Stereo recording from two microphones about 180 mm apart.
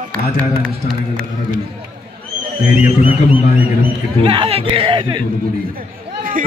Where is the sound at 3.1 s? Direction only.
10° right (ahead or behind).